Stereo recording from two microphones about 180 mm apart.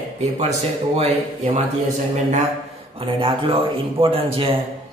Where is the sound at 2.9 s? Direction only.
30° right (ahead or behind).